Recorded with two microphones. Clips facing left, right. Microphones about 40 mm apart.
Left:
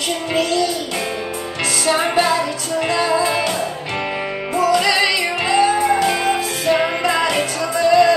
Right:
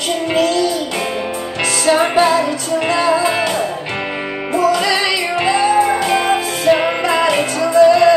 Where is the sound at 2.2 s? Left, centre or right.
Right.